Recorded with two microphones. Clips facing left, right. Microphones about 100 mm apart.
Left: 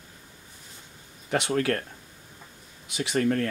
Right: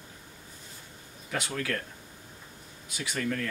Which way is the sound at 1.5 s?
45° left (ahead or behind).